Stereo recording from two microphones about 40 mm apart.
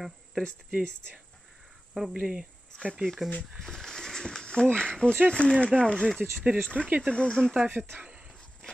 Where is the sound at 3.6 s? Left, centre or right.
Centre.